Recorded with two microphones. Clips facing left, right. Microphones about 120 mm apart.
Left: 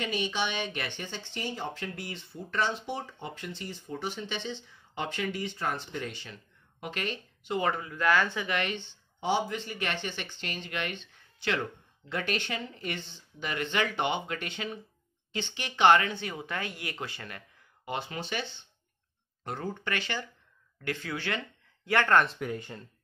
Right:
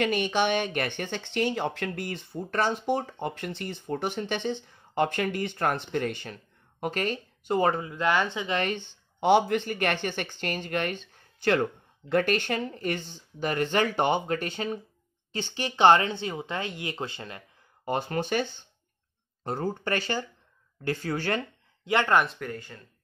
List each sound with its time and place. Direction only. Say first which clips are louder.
0.0 s speech: right 6 dB; 55° right (ahead or behind); by 7.8 s 40° right (ahead or behind)
7.8 s speech: right 1 dB; 25° right (ahead or behind)
8.5 s speech: right 5 dB; 40° right (ahead or behind)
9.2 s speech: right 8 dB; 60° right (ahead or behind); by 17.4 s 25° right (ahead or behind)
17.8 s speech: right 7 dB; 45° right (ahead or behind)
19.4 s speech: right 5 dB; 35° right (ahead or behind)
21.8 s speech: right 1 dB; 15° right (ahead or behind)
22.2 s speech: even; centre (ahead or behind)
22.5 s speech: left 2 dB; 20° left (ahead or behind)